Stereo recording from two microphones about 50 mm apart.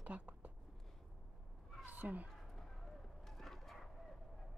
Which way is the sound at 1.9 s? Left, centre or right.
Right.